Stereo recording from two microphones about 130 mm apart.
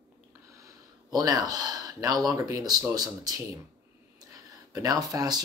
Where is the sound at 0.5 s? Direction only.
25° right (ahead or behind).